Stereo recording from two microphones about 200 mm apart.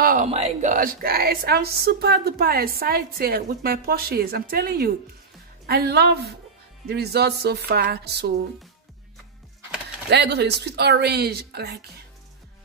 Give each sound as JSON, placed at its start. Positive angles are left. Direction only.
{"t": 0.0, "sound": "speech", "side_deg": -40}
{"t": 10.0, "sound": "speech", "side_deg": -55}